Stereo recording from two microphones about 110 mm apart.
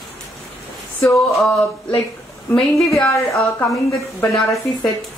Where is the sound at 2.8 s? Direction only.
25° left (ahead or behind).